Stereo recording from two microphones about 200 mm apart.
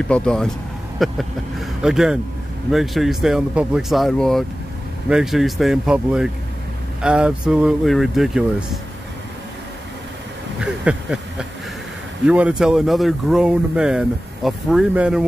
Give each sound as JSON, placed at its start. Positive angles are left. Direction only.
{"t": 0.1, "sound": "speech", "side_deg": 5}
{"t": 10.6, "sound": "a sound", "side_deg": -5}
{"t": 12.3, "sound": "speech", "side_deg": -5}